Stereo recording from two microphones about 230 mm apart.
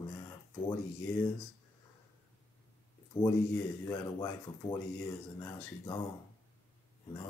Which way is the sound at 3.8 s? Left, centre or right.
Centre.